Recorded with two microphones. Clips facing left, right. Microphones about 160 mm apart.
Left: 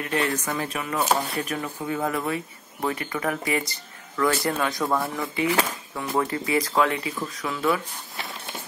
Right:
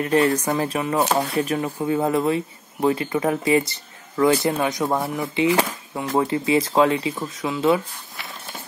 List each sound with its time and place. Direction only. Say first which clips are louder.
0.0 s speech: right 7 dB; 35° right (ahead or behind)